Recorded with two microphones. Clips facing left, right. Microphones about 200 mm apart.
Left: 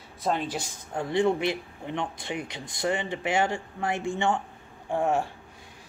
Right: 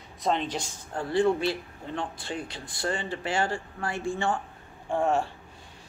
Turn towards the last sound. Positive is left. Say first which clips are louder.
# even
turn(degrees=10)  # may be behind; listen again after turning